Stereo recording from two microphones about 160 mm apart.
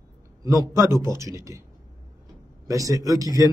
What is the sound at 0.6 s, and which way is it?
A man's voice, 20° right (ahead or behind).